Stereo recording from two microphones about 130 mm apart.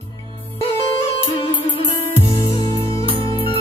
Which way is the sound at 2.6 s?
45° right (ahead or behind).